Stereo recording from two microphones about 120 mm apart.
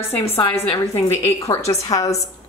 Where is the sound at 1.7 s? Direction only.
30° left (ahead or behind).